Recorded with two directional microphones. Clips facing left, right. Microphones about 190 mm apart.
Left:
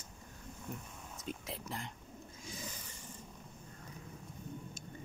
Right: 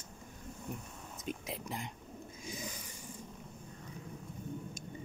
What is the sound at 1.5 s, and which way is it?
Speech, 15° right (ahead or behind).